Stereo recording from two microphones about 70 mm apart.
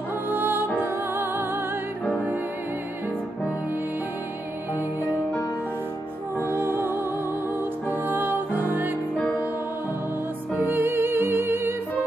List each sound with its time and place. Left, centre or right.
0.3 s music: right
6.5 s music: right
7.9 s music: right
10.5 s music: right